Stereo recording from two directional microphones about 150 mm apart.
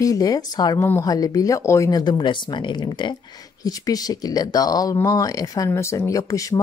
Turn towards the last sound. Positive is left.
turn(degrees=20)  # may be behind; listen again after turning